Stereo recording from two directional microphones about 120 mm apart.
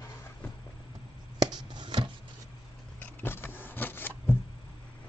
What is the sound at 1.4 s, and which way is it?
Chopping, 35° right (ahead or behind).